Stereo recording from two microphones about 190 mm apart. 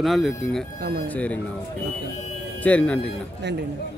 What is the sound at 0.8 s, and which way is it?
Speech, 55° right (ahead or behind).